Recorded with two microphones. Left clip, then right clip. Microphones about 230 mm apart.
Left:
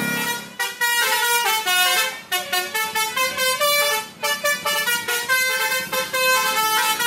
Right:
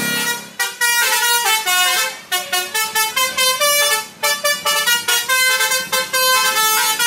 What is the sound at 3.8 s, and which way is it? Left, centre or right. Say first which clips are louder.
Vehicle: right 4 dB; centre.